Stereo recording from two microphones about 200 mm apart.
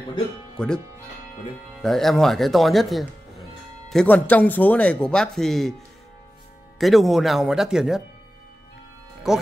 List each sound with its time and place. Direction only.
0.6 s speech: 5° left (ahead or behind)
1.8 s speech: centre (ahead or behind)
6.8 s speech: centre (ahead or behind)
9.3 s speech: centre (ahead or behind)